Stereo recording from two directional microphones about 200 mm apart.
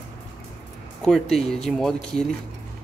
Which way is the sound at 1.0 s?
Centre (ahead or behind).